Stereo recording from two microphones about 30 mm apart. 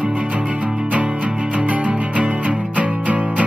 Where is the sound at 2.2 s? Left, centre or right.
Right.